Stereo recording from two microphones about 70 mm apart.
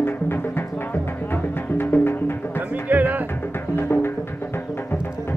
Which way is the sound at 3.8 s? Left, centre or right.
Left.